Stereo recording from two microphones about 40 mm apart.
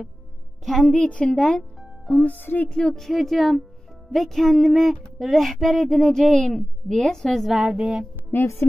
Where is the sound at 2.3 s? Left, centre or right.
Left.